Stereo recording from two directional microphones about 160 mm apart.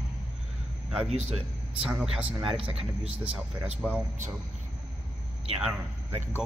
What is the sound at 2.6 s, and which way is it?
Speech, 35° right (ahead or behind).